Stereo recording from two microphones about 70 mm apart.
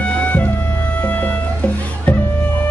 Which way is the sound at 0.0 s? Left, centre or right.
Centre.